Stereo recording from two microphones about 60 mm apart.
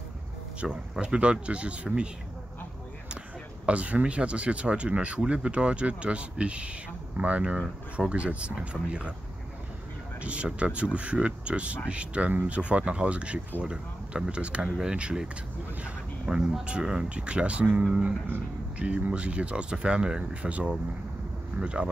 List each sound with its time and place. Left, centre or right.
0.6 s speech: centre
3.6 s speech: right
10.2 s speech: centre
16.3 s speech: centre
18.8 s speech: right